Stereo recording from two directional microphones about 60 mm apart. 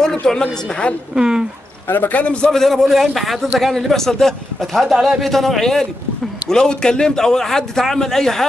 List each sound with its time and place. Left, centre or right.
0.0 s a man's voice: centre
1.1 s speech: centre
1.9 s a man's voice: left
2.5 s a man's voice: centre